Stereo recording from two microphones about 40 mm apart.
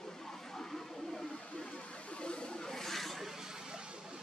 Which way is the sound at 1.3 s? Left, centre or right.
Left.